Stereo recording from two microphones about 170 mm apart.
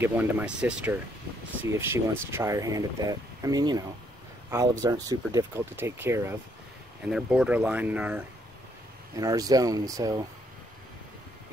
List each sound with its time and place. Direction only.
0.0 s speech: 10° right (ahead or behind)
7.1 s speech: 5° right (ahead or behind)
9.1 s speech: 20° right (ahead or behind)